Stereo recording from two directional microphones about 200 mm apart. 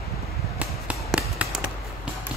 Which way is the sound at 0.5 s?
5° right (ahead or behind).